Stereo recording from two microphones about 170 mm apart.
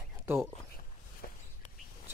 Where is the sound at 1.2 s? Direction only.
60° left (ahead or behind).